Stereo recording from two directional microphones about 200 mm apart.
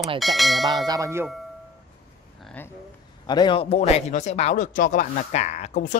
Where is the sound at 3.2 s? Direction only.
20° left (ahead or behind).